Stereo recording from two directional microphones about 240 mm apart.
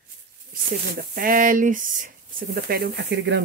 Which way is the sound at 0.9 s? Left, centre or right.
Right.